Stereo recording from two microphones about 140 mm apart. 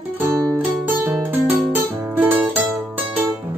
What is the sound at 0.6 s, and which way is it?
Music, 15° right (ahead or behind).